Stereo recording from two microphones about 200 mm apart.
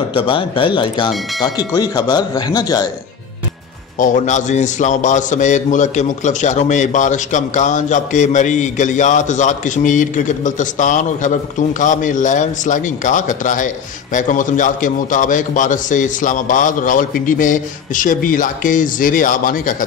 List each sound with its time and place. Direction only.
0.1 s speech: 25° left (ahead or behind)
4.0 s a man's voice: 40° left (ahead or behind)